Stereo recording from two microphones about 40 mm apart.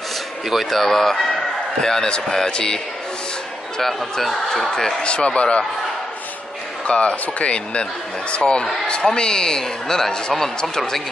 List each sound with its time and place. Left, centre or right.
0.7 s a man's voice: centre
3.8 s speech: centre
5.0 s speech: left
6.9 s a man's voice: left; by 10.2 s centre